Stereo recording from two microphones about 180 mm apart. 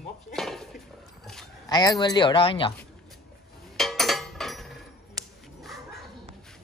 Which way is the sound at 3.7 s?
Centre (ahead or behind).